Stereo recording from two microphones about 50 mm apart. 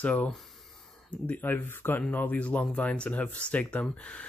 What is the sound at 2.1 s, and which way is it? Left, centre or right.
Speech, left.